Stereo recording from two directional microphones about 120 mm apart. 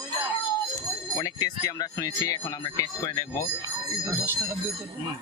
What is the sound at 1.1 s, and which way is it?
Speech, 30° left (ahead or behind).